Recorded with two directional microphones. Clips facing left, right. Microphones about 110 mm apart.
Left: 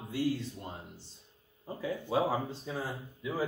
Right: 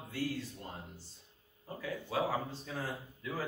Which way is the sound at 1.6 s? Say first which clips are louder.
Left 4 dB; 25° left (ahead or behind).